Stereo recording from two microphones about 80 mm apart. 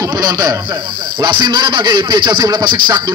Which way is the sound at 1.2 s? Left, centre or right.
Right.